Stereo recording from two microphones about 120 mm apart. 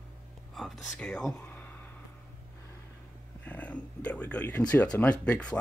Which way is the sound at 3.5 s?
10° left (ahead or behind).